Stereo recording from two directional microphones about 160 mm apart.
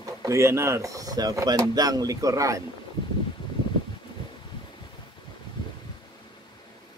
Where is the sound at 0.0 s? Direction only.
20° right (ahead or behind).